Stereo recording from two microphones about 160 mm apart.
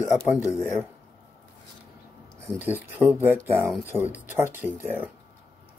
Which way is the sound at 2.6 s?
10° right (ahead or behind).